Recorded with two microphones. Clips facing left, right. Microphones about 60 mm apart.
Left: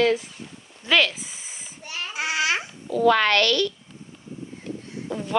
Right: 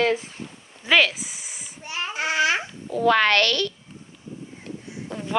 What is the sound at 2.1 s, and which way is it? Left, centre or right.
Babbling, centre.